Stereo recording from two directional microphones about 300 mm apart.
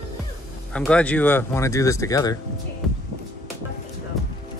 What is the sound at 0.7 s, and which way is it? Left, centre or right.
Speech, centre.